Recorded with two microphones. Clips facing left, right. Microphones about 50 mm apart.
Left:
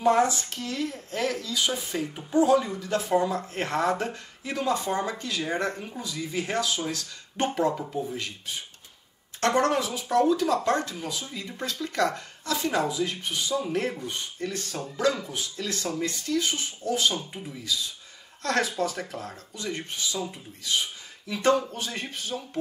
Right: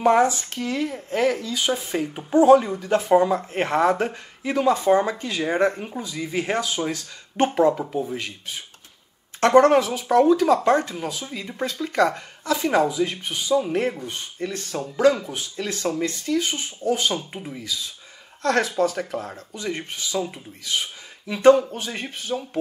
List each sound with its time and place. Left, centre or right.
0.0 s speech: right
9.4 s speech: right